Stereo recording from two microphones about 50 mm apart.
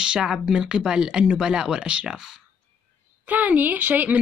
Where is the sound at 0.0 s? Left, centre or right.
Centre.